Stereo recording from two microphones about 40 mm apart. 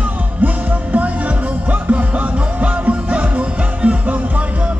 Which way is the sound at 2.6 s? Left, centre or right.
Right.